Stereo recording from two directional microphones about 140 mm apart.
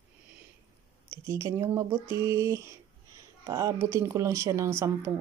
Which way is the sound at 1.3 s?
25° right (ahead or behind).